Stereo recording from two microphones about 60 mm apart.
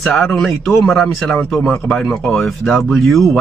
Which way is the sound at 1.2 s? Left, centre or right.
Centre.